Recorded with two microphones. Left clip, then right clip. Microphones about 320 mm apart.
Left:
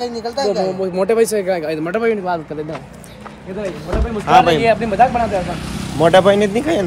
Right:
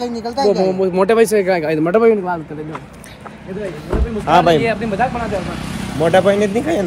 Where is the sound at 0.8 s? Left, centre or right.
Right.